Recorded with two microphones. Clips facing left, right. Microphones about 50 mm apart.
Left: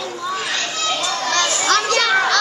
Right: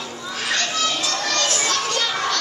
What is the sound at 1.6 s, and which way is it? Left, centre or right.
Children playing, left.